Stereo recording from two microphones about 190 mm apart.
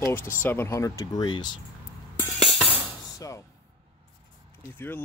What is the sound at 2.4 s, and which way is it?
Music, centre (ahead or behind).